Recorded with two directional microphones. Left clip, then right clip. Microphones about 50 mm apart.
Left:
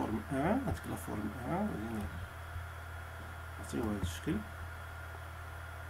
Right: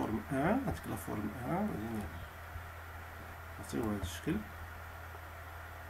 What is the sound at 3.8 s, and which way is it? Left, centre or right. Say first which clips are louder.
Speech: even; centre.